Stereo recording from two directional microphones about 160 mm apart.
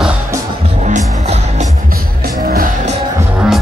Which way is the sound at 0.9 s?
45° right (ahead or behind).